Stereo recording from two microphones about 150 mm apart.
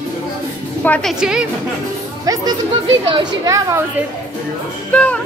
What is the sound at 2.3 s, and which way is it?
A woman's voice, 25° right (ahead or behind).